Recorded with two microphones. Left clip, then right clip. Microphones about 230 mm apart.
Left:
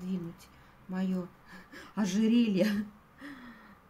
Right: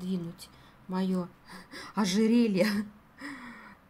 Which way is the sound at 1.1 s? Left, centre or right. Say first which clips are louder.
Right 4 dB; right.